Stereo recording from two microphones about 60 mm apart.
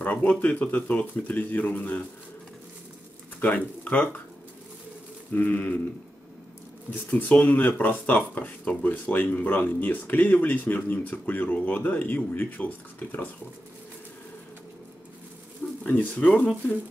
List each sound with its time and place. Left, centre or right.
0.0 s speech: left
3.3 s speech: left
5.3 s speech: left
7.1 s speech: left
15.9 s speech: left